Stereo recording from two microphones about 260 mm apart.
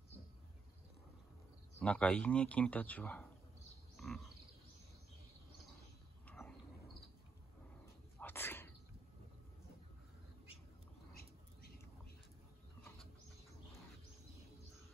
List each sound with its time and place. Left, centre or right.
1.8 s speech: centre
3.9 s frog: centre
6.2 s a sound: centre
7.8 s dog: centre